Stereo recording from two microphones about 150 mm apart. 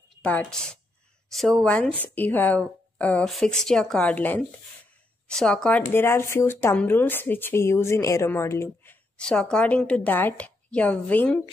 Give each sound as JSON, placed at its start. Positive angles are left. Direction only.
{"t": 0.2, "sound": "a woman's voice", "side_deg": 10}
{"t": 6.0, "sound": "a woman's voice", "side_deg": 15}
{"t": 9.2, "sound": "a woman's voice", "side_deg": 5}